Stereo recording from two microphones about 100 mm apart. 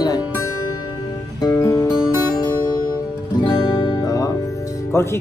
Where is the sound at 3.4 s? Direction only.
50° left (ahead or behind).